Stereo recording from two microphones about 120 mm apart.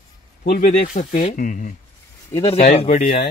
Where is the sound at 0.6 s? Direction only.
80° left.